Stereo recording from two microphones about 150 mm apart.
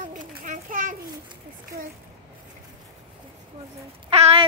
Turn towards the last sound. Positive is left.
turn(degrees=-40)  # may be behind; listen again after turning